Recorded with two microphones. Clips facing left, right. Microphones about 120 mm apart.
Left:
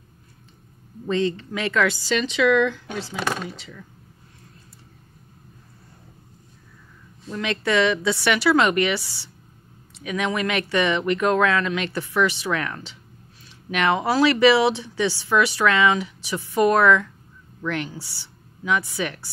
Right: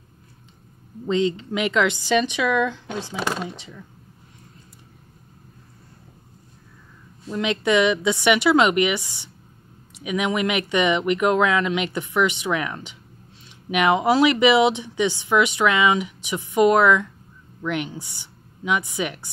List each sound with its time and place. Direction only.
1.0 s a woman's voice: 20° right (ahead or behind)
7.3 s a woman's voice: 20° right (ahead or behind)